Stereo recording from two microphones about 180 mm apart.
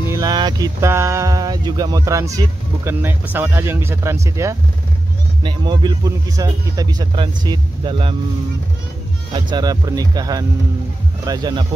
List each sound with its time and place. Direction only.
0.1 s speech: 20° right (ahead or behind)
5.4 s speech: 25° right (ahead or behind)
9.3 s speech: 25° right (ahead or behind)